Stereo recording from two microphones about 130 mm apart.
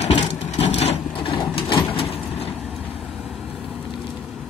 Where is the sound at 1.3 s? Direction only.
45° left (ahead or behind).